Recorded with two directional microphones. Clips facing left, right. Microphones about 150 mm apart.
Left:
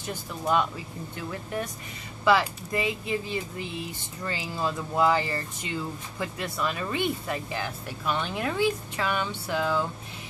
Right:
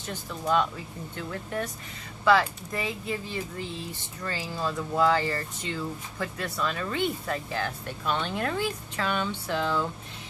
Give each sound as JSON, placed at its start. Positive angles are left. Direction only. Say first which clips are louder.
{"t": 0.1, "sound": "speech", "louder": "even", "side_deg": 15}
{"t": 2.2, "sound": "speech", "louder": "even", "side_deg": 15}